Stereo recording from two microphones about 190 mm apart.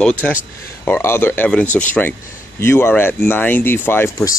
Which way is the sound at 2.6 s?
15° left (ahead or behind).